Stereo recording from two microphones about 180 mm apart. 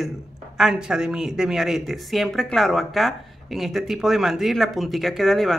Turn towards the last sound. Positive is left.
turn(degrees=0)  # may be behind; listen again after turning